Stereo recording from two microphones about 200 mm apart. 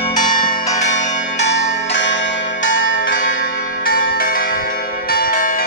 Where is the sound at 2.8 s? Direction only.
70° left (ahead or behind).